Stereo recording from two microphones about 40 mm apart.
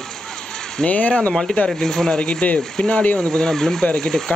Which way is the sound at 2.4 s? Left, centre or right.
Left.